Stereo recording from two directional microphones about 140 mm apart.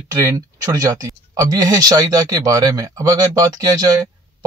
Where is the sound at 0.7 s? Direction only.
25° right (ahead or behind).